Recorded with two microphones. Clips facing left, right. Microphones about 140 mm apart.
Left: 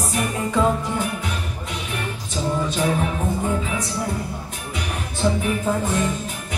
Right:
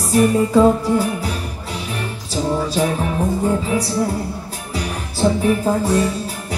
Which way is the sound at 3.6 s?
35° right (ahead or behind).